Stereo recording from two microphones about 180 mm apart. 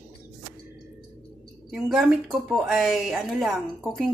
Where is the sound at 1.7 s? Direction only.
5° right (ahead or behind).